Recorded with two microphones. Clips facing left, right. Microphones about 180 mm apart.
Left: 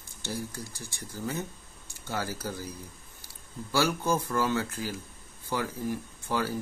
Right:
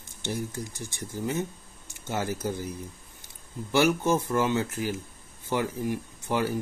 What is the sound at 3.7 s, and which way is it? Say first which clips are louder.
Speech: right 4 dB; 20° right (ahead or behind).